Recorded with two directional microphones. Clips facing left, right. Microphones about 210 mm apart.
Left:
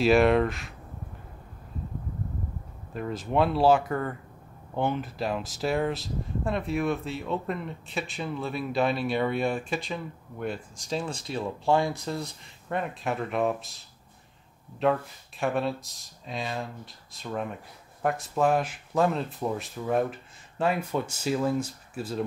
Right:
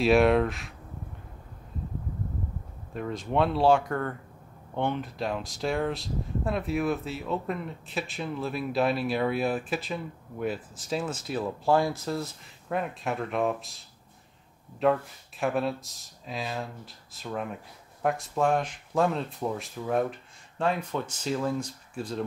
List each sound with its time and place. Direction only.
0.0 s speech: centre (ahead or behind)
2.9 s speech: centre (ahead or behind)
14.8 s speech: centre (ahead or behind)